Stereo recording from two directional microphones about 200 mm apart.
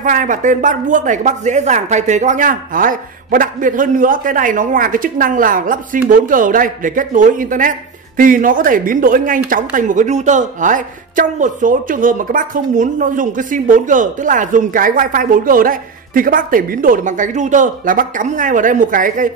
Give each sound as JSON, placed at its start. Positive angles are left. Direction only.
{"t": 0.0, "sound": "speech", "side_deg": -40}